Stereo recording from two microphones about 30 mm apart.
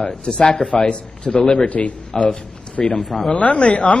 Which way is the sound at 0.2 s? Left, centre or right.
Left.